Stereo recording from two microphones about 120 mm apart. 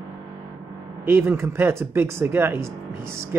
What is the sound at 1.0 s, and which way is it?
Speech, 20° right (ahead or behind).